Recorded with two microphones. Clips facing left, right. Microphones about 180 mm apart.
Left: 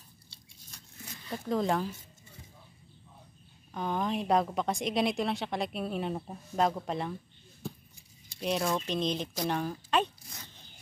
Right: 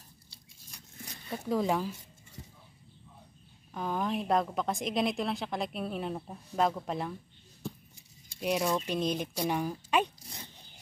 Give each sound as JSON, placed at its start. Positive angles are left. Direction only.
{"t": 0.7, "sound": "a sound", "side_deg": -15}
{"t": 1.3, "sound": "speech", "side_deg": -5}
{"t": 3.7, "sound": "a woman's voice", "side_deg": -5}
{"t": 8.4, "sound": "speech", "side_deg": -10}
{"t": 10.2, "sound": "dog", "side_deg": -20}